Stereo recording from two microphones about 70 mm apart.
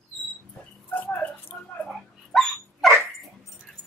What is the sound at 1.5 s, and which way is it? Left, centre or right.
Whispering, left.